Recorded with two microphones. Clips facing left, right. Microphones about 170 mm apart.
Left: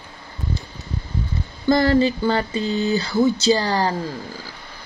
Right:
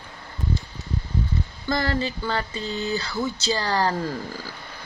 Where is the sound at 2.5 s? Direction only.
15° left (ahead or behind).